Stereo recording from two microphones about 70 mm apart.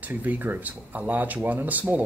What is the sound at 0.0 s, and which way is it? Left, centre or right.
Speech, right.